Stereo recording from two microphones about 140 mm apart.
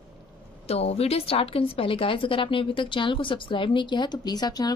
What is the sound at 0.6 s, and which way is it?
A woman's voice, 45° left (ahead or behind).